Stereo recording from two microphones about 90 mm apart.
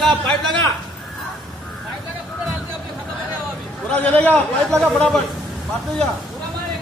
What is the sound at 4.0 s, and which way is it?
Speech, 15° left (ahead or behind).